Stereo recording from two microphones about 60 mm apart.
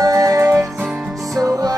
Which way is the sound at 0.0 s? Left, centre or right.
Right.